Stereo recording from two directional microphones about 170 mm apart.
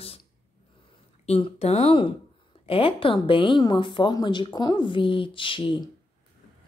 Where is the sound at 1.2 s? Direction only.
40° left (ahead or behind).